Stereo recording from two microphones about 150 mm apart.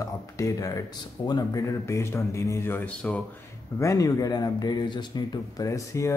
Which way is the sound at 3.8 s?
20° left (ahead or behind).